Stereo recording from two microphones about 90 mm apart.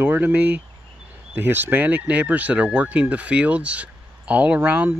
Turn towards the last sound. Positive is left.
turn(degrees=-15)  # may be behind; listen again after turning